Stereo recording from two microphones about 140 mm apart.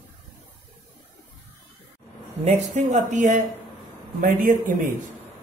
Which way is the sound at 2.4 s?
55° right (ahead or behind).